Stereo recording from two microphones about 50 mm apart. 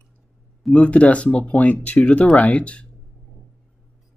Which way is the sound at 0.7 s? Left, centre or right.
Left.